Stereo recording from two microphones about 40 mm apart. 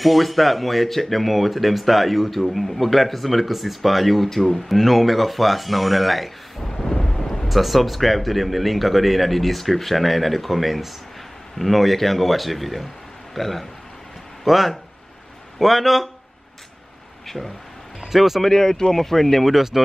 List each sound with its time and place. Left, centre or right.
0.0 s speech: centre
6.7 s thunder: centre
7.4 s speech: centre
18.0 s speech: centre
18.4 s speech: centre
19.5 s speech: centre